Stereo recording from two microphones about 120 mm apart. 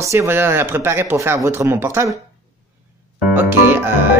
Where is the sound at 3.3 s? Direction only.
15° right (ahead or behind).